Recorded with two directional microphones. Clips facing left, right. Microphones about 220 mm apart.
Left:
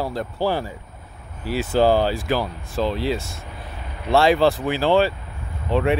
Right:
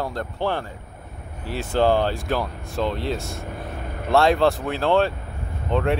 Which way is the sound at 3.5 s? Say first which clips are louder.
Right 5 dB; 50° right (ahead or behind).